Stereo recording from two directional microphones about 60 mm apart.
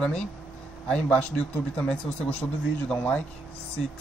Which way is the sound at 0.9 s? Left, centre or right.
Centre.